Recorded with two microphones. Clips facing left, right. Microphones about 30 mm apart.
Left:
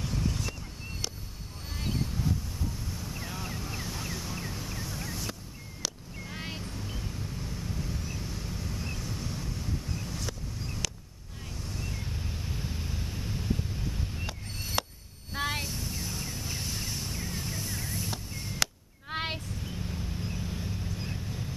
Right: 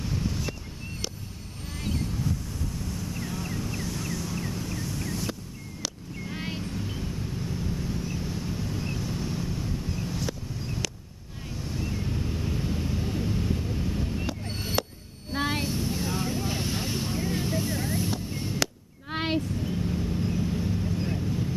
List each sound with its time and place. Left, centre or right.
0.0 s vehicle: centre
3.1 s vehicle: centre
4.4 s a sound: centre
5.8 s vehicle: centre
14.8 s a sound: centre
15.3 s vehicle: centre
18.3 s chop: centre
18.6 s a sound: centre
20.2 s vehicle: centre